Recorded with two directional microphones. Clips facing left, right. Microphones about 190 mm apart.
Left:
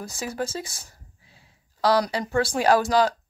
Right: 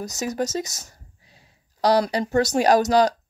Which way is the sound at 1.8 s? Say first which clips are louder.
Right 2 dB; 15° right (ahead or behind).